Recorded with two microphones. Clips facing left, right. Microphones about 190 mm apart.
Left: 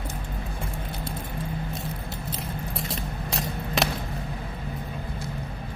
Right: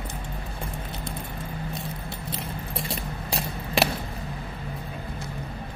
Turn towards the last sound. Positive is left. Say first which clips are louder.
# right 1 dB
turn(degrees=0)  # may be behind; listen again after turning